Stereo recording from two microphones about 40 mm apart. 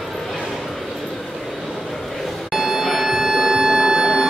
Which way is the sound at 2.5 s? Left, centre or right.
Centre.